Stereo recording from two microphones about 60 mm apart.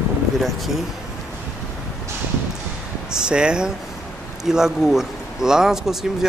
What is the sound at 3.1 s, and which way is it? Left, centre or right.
Speech, centre.